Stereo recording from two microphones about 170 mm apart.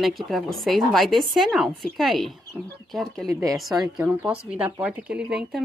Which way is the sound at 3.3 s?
20° right (ahead or behind).